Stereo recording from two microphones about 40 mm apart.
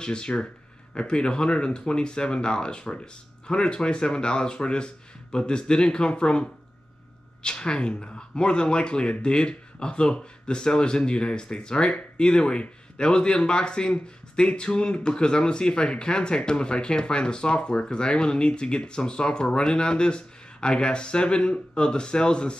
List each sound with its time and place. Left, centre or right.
0.0 s speech: left